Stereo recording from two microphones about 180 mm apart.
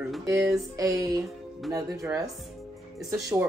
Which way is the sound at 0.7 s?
20° right (ahead or behind).